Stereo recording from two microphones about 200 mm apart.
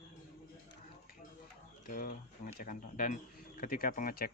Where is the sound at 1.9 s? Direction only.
45° left (ahead or behind).